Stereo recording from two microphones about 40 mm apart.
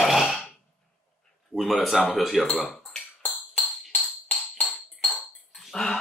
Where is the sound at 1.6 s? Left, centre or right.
Centre.